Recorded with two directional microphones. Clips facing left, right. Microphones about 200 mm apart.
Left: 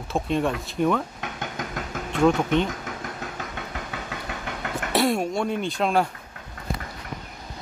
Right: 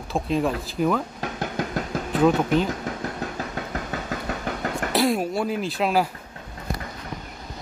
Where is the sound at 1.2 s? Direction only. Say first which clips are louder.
Right 5 dB; 35° right (ahead or behind).